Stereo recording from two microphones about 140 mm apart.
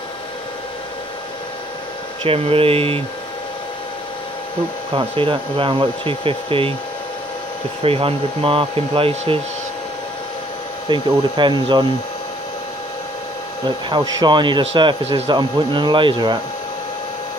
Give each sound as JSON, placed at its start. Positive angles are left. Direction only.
{"t": 2.2, "sound": "speech", "side_deg": -45}
{"t": 4.9, "sound": "speech", "side_deg": -40}
{"t": 7.8, "sound": "speech", "side_deg": -40}
{"t": 10.9, "sound": "speech", "side_deg": -35}
{"t": 13.7, "sound": "speech", "side_deg": -30}